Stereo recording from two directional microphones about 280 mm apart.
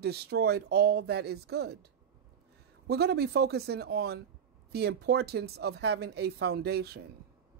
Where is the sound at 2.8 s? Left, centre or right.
Right.